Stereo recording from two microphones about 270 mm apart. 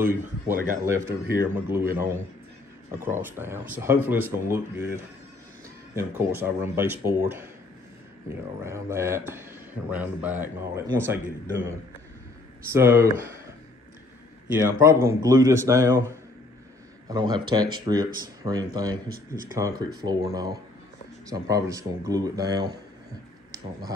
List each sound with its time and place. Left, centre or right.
0.5 s speech: right
0.8 s speech: centre
8.4 s speech: centre
12.7 s speech: centre
14.6 s speech: centre
17.1 s speech: centre
19.0 s speech: right
19.6 s speech: centre